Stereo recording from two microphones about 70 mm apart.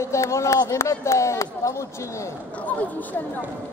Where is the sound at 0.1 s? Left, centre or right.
Left.